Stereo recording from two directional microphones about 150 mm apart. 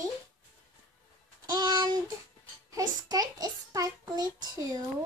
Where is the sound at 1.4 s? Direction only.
25° right (ahead or behind).